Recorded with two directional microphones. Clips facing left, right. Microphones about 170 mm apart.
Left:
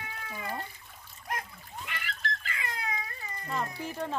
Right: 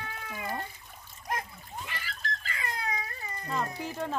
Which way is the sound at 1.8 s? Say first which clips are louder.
Left 3 dB; 30° right (ahead or behind).